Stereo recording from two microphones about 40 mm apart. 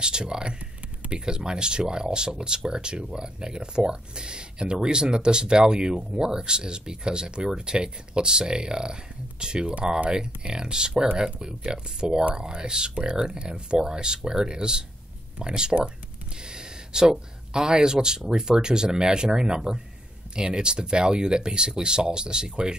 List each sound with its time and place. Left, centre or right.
0.0 s speech: right